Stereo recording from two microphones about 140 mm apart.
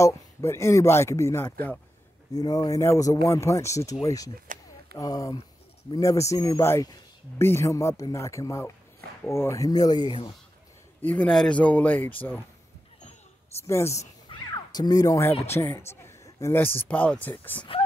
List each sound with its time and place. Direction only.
0.0 s speech: 20° left (ahead or behind)
2.3 s speech: 25° left (ahead or behind)
4.5 s a sound: 70° right (ahead or behind)
4.9 s speech: 25° left (ahead or behind)
11.0 s speech: 10° left (ahead or behind)
13.7 s speech: 20° left (ahead or behind)
14.3 s cat: 30° left (ahead or behind)
15.5 s speech: 20° left (ahead or behind)